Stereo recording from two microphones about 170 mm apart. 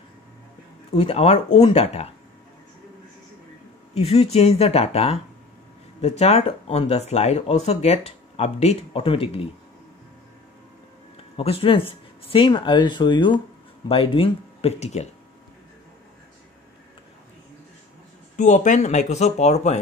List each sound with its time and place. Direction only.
0.9 s speech: 35° left (ahead or behind)
3.9 s speech: 35° left (ahead or behind)
11.3 s speech: 35° left (ahead or behind)
18.3 s speech: 45° left (ahead or behind)